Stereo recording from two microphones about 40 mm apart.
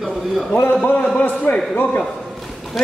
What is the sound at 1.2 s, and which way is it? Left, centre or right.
Speech, left.